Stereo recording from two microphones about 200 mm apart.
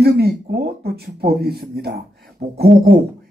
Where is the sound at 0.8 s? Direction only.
50° right (ahead or behind).